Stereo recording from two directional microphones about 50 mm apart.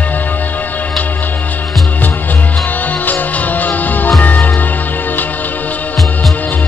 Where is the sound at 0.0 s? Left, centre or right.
Left.